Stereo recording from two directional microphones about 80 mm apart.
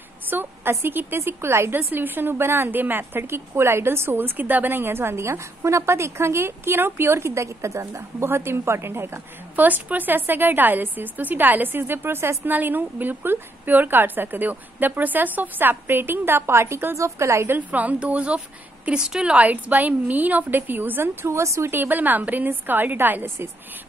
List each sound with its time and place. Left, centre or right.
0.3 s a woman's voice: right
17.6 s a woman's voice: centre; by 21.7 s right
21.7 s a woman's voice: right